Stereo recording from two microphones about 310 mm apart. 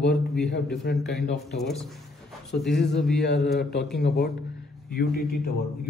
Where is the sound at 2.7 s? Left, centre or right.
Left.